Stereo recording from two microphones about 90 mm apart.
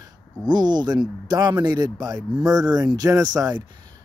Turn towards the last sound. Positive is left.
turn(degrees=-45)  # may be behind; listen again after turning